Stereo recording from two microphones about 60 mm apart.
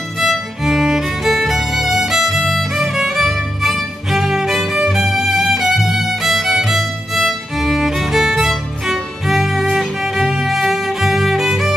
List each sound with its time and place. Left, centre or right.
0.2 s music: centre